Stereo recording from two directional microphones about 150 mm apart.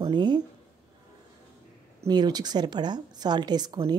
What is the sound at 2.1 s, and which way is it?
A woman's voice, 25° right (ahead or behind).